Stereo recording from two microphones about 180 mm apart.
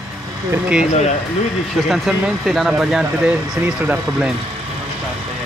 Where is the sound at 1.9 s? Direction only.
5° right (ahead or behind).